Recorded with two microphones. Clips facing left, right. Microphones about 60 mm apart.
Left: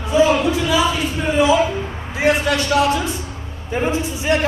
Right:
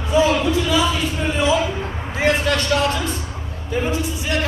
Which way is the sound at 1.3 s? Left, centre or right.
Centre.